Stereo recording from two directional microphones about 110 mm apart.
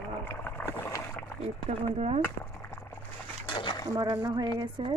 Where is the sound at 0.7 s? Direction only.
20° left (ahead or behind).